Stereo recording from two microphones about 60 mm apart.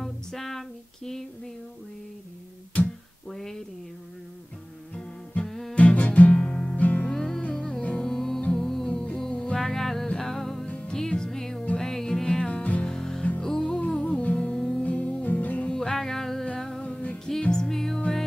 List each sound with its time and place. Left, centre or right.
0.0 s music: centre
3.3 s speech: centre
5.4 s music: centre
5.8 s music: left
7.1 s music: centre
8.1 s music: centre
12.4 s music: left
12.8 s music: centre; by 15.7 s left
15.7 s music: centre
16.8 s music: left
17.4 s music: centre